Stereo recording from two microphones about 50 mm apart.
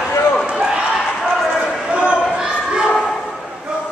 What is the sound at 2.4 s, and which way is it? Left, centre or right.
Children playing, centre.